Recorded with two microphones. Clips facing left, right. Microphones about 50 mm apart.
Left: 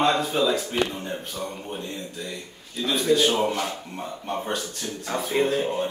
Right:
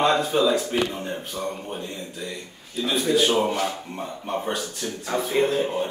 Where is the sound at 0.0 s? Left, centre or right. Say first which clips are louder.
Right 2 dB; centre.